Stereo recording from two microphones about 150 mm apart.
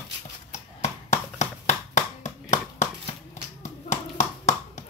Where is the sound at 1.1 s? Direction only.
50° left (ahead or behind).